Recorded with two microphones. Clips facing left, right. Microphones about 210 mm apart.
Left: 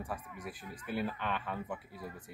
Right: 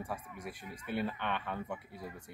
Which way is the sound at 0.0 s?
Centre (ahead or behind).